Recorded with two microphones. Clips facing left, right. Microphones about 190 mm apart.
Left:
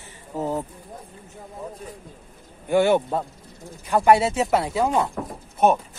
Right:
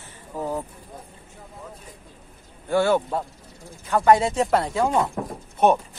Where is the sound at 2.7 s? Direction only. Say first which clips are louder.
Left 2 dB; 15° left (ahead or behind).